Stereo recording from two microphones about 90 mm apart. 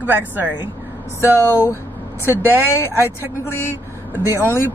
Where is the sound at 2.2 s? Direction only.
25° left (ahead or behind).